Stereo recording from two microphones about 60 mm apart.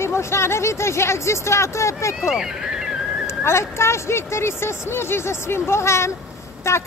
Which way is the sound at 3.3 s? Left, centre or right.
Left.